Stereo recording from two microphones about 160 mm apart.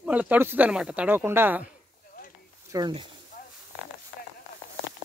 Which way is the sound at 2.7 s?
25° right (ahead or behind).